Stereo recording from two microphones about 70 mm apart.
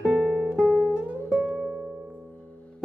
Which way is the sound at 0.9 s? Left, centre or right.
Centre.